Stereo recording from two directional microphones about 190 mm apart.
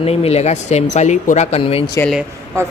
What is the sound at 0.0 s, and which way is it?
Speech, 30° left (ahead or behind).